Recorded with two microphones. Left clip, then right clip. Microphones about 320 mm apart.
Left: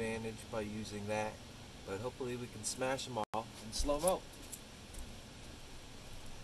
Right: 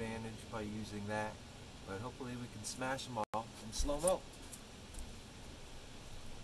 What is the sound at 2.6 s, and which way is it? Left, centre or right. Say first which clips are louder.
Speech: left 3 dB; centre.